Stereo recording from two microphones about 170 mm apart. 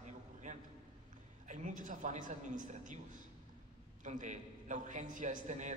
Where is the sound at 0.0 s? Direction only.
45° right (ahead or behind).